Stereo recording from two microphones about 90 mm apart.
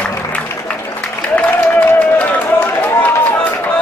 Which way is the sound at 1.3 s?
15° left (ahead or behind).